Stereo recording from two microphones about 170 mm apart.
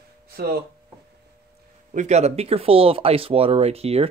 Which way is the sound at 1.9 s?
40° right (ahead or behind).